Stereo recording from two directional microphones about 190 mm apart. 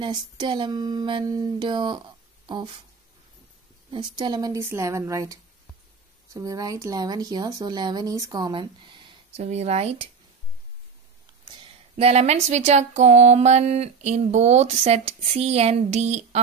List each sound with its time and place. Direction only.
0.0 s speech: 25° right (ahead or behind)
3.9 s speech: 25° right (ahead or behind)
11.5 s speech: 35° right (ahead or behind)